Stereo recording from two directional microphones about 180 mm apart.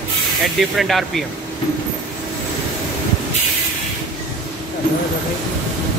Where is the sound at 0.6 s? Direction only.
Centre (ahead or behind).